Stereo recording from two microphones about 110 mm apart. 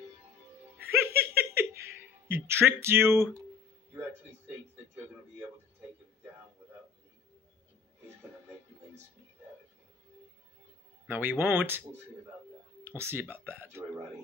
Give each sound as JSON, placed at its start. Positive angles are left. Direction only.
{"t": 0.7, "sound": "music", "side_deg": -20}
{"t": 11.1, "sound": "speech", "side_deg": -20}
{"t": 12.8, "sound": "speech", "side_deg": -20}